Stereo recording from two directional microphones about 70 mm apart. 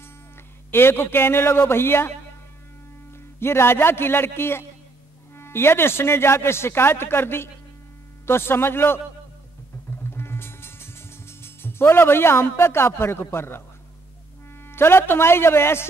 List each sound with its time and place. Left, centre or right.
0.7 s speech: left
3.3 s speech: left
9.8 s music: left
14.7 s speech: left